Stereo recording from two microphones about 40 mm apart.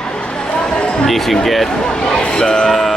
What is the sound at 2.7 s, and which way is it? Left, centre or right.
Speech, centre.